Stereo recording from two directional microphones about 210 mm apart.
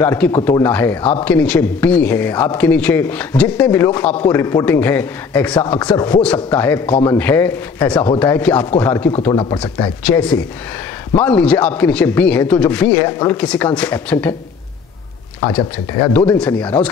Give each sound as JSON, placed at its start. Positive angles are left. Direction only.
{"t": 0.0, "sound": "speech", "side_deg": 10}
{"t": 5.6, "sound": "speech", "side_deg": 20}
{"t": 6.2, "sound": "speech", "side_deg": 10}
{"t": 9.3, "sound": "speech", "side_deg": 20}
{"t": 10.0, "sound": "speech", "side_deg": 5}
{"t": 15.5, "sound": "speech", "side_deg": 10}